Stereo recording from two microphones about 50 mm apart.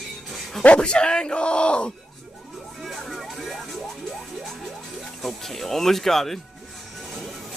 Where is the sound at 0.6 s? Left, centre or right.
Left.